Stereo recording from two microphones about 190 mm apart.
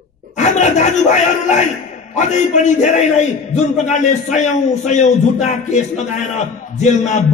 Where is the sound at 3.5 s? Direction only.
40° left (ahead or behind).